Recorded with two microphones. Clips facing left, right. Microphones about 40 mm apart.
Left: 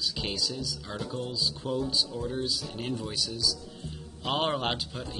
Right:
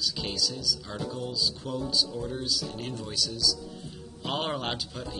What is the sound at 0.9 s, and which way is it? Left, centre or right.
Speech, centre.